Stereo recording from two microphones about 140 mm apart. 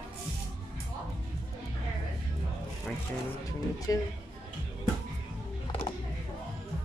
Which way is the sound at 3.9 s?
25° left (ahead or behind).